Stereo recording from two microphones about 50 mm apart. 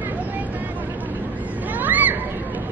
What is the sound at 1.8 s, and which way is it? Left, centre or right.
Children playing, right.